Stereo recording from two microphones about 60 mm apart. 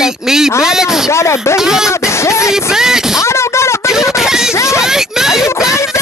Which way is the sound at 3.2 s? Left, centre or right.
Left.